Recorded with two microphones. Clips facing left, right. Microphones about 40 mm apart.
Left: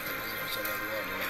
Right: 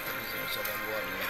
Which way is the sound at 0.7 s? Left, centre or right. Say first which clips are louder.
Even; right.